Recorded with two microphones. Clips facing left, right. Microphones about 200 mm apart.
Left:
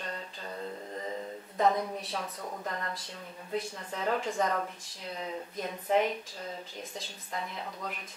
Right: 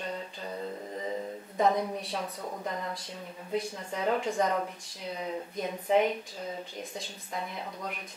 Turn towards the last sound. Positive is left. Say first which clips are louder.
# right 1 dB
turn(degrees=0)  # may be behind; listen again after turning